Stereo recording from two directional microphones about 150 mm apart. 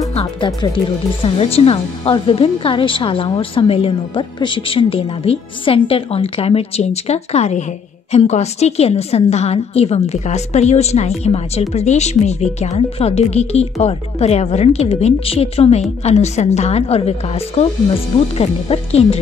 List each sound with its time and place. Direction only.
0.1 s speech: 45° left (ahead or behind)